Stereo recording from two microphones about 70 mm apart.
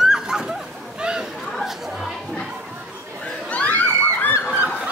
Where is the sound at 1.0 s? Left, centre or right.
Centre.